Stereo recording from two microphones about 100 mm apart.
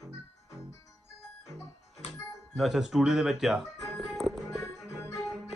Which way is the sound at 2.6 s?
Centre (ahead or behind).